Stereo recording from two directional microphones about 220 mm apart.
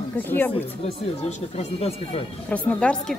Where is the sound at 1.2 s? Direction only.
30° left (ahead or behind).